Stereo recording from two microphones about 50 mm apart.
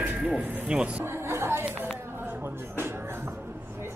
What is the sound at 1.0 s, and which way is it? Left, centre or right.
Chatter, right.